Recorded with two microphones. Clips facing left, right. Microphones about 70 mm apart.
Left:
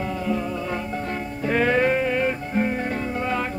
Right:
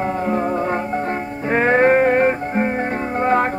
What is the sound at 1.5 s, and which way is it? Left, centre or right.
Music, right.